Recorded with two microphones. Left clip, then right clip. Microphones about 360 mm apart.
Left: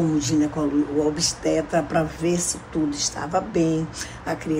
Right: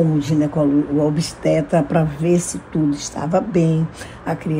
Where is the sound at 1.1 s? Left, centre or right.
Centre.